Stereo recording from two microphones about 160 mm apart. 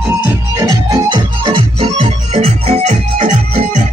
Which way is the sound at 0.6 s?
25° right (ahead or behind).